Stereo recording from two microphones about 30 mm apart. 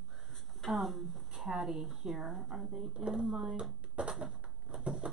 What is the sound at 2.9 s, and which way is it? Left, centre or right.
Speech, right.